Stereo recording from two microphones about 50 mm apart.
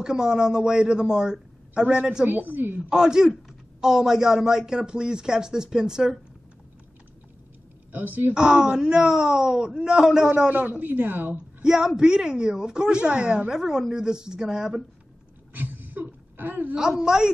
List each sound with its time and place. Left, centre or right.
0.0 s a woman's voice: centre
2.2 s a woman's voice: right
2.9 s a woman's voice: centre
7.9 s a woman's voice: right
8.4 s a woman's voice: centre
10.5 s a woman's voice: right
11.6 s a man's voice: centre
15.5 s a sound: right
16.7 s a woman's voice: centre